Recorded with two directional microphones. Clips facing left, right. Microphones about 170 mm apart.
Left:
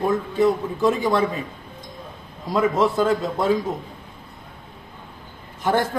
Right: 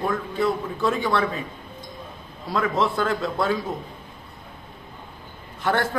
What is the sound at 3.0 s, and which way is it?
Speech, 15° left (ahead or behind).